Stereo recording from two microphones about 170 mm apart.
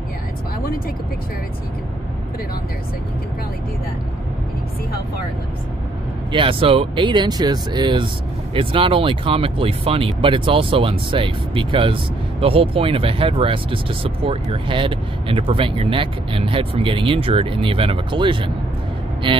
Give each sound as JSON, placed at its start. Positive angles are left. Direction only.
{"t": 6.3, "sound": "speech", "side_deg": -30}